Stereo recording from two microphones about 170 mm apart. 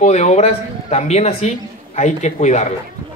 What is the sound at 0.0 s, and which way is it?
Speech, 40° left (ahead or behind).